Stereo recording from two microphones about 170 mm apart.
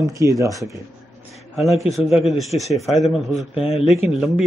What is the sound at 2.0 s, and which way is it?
Speech, 35° left (ahead or behind).